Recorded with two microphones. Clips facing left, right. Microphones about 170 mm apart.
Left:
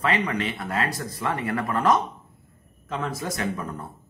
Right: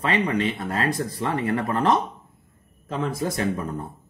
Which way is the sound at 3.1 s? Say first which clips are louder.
Right 4 dB; 30° right (ahead or behind).